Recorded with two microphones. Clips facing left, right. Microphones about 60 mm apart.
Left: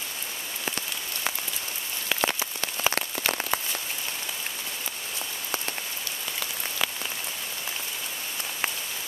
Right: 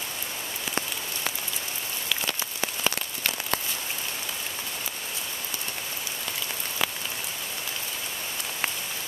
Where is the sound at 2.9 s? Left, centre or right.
Centre.